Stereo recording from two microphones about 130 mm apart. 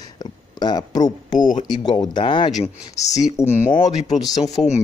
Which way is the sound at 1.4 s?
80° left.